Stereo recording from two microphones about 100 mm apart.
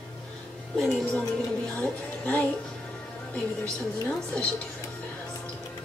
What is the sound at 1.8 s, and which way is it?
Speech, 15° left (ahead or behind).